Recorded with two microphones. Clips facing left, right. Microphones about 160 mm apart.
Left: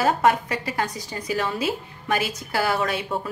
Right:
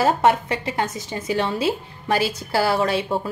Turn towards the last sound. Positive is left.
turn(degrees=-30)  # may be behind; listen again after turning